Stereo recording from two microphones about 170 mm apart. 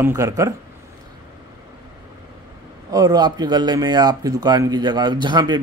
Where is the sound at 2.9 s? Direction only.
20° right (ahead or behind).